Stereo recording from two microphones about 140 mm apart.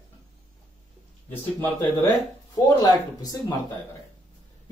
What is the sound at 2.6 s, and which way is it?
Speech, 25° left (ahead or behind).